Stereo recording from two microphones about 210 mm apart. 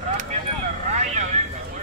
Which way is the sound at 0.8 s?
35° right (ahead or behind).